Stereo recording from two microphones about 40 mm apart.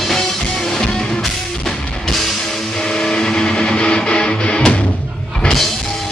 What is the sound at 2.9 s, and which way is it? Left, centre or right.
Music, left.